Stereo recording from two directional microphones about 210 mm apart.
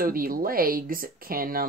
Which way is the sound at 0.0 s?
45° right (ahead or behind).